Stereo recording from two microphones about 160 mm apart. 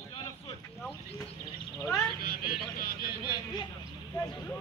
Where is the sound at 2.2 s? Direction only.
70° left (ahead or behind).